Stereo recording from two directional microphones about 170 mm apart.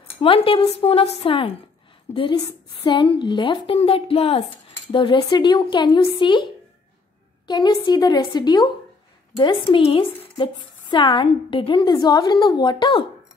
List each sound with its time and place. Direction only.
0.2 s a woman's voice: 30° left (ahead or behind)
2.1 s a woman's voice: 10° left (ahead or behind)
2.8 s a woman's voice: 30° left (ahead or behind)
7.4 s a woman's voice: 25° left (ahead or behind)